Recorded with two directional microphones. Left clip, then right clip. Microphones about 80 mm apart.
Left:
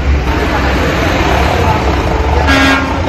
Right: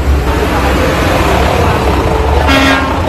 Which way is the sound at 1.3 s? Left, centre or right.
Left.